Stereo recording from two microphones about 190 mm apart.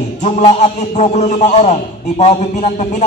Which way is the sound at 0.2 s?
35° left (ahead or behind).